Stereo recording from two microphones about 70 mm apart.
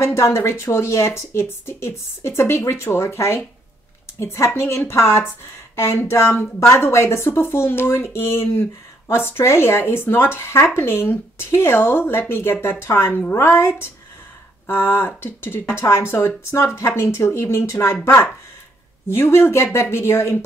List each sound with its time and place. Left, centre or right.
0.0 s speech: left